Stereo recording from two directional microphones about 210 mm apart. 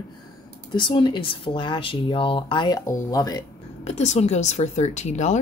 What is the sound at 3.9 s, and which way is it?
Speech, 30° left (ahead or behind).